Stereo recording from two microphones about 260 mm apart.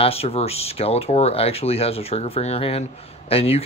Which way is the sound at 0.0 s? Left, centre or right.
Left.